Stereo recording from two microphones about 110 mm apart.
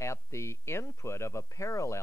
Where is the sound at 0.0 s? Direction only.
25° left (ahead or behind).